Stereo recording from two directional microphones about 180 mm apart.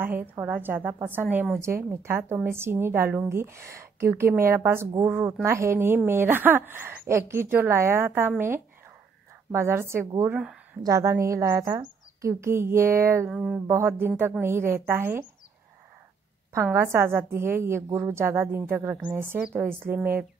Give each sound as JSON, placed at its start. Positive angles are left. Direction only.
{"t": 0.0, "sound": "a woman's voice", "side_deg": -10}
{"t": 16.7, "sound": "a woman's voice", "side_deg": -15}